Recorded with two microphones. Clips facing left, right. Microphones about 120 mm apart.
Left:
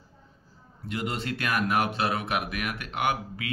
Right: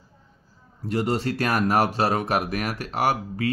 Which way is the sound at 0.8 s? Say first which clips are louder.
Right 7 dB; 35° right (ahead or behind).